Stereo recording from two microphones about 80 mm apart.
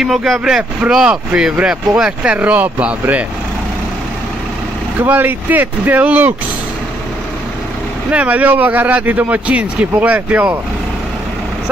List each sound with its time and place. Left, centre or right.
0.0 s speech: centre
5.0 s speech: right
8.1 s speech: centre